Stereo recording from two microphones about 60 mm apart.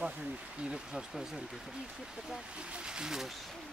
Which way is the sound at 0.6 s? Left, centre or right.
Centre.